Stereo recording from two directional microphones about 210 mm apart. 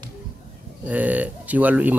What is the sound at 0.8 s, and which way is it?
Speech, 5° right (ahead or behind).